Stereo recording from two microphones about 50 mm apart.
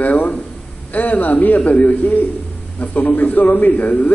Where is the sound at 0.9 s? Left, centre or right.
Left.